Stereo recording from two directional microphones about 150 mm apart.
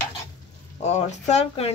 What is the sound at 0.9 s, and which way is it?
Speech, 50° left (ahead or behind).